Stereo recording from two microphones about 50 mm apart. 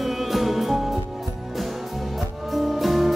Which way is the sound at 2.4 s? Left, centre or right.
Centre.